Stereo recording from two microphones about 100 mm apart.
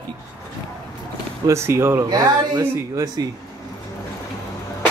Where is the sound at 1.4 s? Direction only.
25° right (ahead or behind).